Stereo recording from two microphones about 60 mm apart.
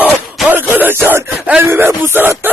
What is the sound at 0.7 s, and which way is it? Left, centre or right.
Speech, right.